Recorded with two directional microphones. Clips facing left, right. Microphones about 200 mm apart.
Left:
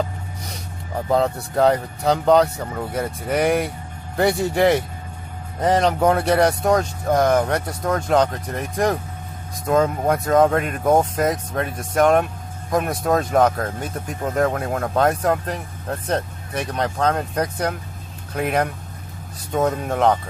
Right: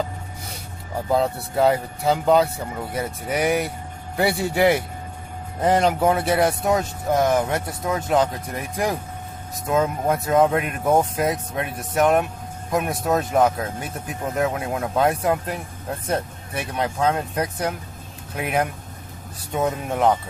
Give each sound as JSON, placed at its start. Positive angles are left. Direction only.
{"t": 1.1, "sound": "a man's voice", "side_deg": -5}